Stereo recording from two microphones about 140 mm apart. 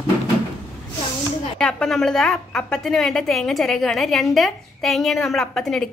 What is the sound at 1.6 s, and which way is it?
A woman's voice, 5° left (ahead or behind).